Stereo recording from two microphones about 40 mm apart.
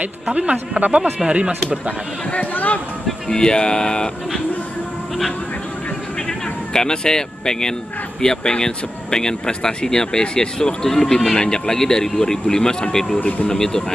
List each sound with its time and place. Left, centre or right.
0.5 s speech: right
1.2 s speech: right
2.3 s speech: left
3.3 s speech: centre
6.7 s speech: centre